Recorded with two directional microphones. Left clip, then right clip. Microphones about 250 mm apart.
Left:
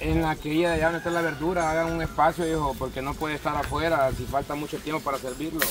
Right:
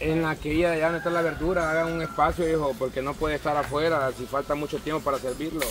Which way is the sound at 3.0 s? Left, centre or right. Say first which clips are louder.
Right 2 dB; left.